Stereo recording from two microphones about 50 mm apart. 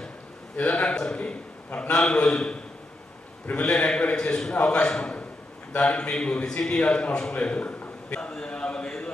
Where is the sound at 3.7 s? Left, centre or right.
Centre.